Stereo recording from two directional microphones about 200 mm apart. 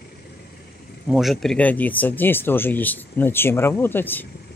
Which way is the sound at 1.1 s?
Centre (ahead or behind).